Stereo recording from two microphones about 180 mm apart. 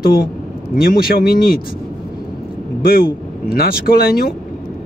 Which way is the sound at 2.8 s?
55° left (ahead or behind).